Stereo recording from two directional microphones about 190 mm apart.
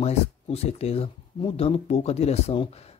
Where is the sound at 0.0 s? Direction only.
35° left (ahead or behind).